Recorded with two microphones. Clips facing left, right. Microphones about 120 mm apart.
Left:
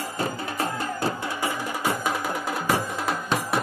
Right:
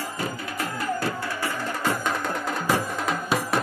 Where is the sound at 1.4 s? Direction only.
10° left (ahead or behind).